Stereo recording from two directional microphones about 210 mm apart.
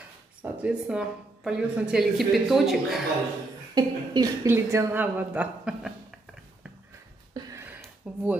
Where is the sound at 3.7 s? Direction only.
20° right (ahead or behind).